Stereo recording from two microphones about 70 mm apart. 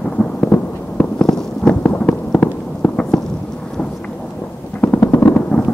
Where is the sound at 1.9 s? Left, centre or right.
Left.